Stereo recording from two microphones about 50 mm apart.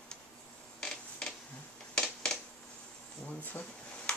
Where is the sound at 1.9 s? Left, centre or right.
Centre.